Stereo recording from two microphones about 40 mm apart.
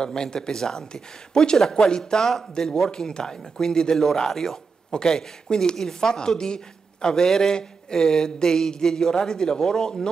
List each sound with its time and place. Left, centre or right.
0.0 s speech: centre